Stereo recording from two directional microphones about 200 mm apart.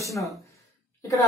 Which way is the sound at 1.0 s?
15° left (ahead or behind).